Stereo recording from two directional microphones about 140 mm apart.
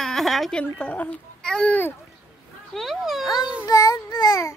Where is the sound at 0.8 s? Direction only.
10° left (ahead or behind).